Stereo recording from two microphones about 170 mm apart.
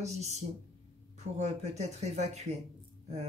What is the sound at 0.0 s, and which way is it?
Speech, 40° right (ahead or behind).